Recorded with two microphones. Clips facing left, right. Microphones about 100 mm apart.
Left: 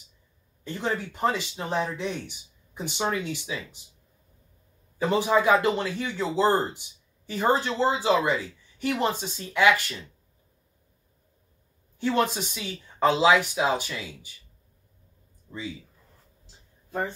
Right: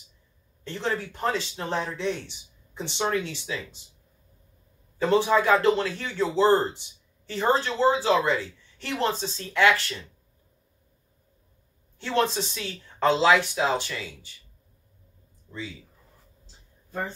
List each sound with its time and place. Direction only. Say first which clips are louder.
0.7 s speech: even; 15° left (ahead or behind)
4.9 s speech: right 1 dB; 15° left (ahead or behind)
12.0 s speech: even; 10° left (ahead or behind)